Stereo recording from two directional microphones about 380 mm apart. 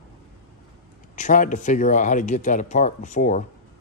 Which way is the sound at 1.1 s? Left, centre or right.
Centre.